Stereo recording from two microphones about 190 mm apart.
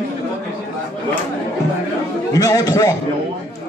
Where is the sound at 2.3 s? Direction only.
20° left (ahead or behind).